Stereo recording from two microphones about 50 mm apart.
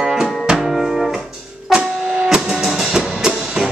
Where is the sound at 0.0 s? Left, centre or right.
Centre.